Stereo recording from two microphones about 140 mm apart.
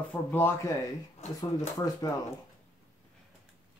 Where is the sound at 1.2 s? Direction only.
55° left (ahead or behind).